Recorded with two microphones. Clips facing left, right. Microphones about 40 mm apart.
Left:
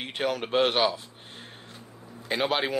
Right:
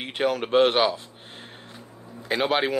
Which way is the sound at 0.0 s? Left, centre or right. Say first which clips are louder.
Right 4 dB; centre.